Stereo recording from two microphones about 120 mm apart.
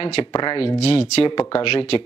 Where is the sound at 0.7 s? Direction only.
55° left (ahead or behind).